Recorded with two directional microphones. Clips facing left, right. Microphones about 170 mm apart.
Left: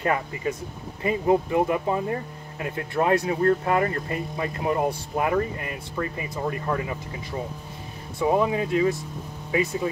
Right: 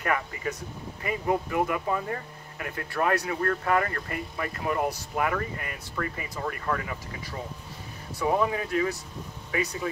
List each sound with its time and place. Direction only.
0.0 s speech: 25° left (ahead or behind)